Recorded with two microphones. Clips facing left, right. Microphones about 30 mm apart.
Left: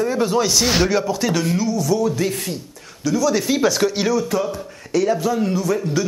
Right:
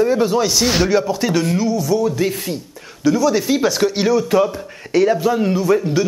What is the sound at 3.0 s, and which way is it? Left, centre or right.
Speech, centre.